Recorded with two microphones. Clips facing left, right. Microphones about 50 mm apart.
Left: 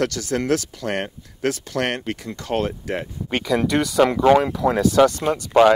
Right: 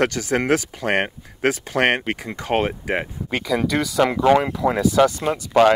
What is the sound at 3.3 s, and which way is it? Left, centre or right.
Speech, centre.